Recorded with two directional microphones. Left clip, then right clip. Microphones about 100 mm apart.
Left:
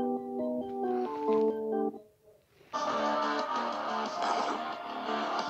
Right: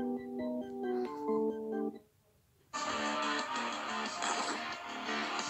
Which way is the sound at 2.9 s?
30° right (ahead or behind).